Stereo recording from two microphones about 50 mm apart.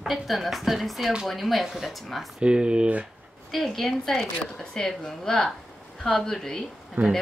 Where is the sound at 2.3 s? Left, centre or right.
Centre.